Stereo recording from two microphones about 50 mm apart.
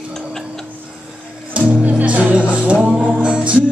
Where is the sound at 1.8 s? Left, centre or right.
Right.